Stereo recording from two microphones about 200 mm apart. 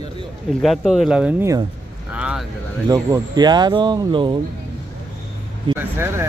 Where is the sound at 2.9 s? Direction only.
20° right (ahead or behind).